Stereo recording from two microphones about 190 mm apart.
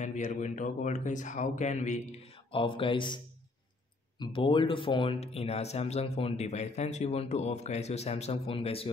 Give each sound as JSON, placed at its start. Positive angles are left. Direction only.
{"t": 0.0, "sound": "speech", "side_deg": 40}
{"t": 4.2, "sound": "speech", "side_deg": 25}